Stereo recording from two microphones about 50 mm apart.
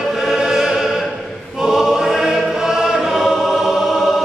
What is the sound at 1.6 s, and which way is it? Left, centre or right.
Choir, centre.